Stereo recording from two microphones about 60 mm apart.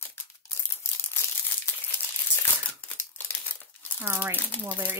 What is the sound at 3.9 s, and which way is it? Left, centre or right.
Speech, right.